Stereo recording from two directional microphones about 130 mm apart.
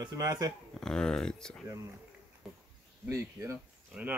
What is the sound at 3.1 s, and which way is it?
Speech, 25° right (ahead or behind).